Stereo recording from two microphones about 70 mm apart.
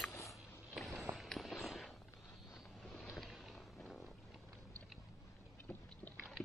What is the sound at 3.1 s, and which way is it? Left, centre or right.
Boat, centre.